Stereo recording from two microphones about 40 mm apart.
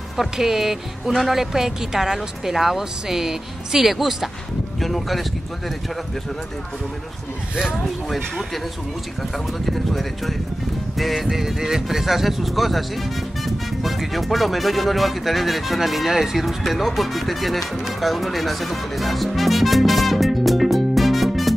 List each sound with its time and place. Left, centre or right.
0.2 s a woman's voice: centre
7.6 s speech: centre
9.7 s a woman's voice: centre
13.8 s speech: centre